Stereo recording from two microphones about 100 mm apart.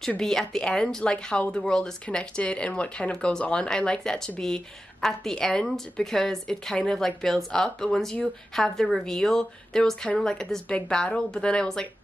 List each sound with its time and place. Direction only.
0.2 s a woman's voice: 5° left (ahead or behind)